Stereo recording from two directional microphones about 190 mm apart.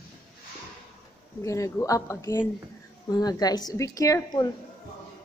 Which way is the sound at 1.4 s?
15° left (ahead or behind).